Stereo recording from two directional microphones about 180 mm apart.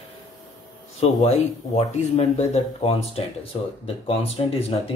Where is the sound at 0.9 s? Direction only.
35° left (ahead or behind).